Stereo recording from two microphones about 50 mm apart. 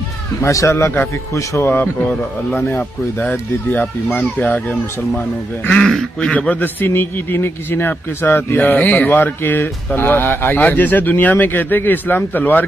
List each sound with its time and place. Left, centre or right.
0.4 s speech: left
1.7 s speech: left
3.3 s speech: left
5.7 s speech: centre
6.3 s a man's voice: left
8.7 s a man's voice: left